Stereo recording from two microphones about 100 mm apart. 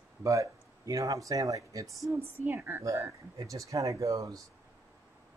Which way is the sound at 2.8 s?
30° right (ahead or behind).